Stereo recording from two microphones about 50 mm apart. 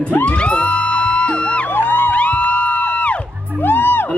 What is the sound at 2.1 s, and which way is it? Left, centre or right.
Music, left.